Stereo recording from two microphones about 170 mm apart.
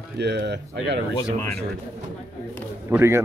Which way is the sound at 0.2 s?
80° right.